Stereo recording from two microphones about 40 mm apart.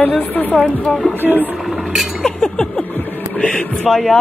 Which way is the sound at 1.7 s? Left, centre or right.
Centre.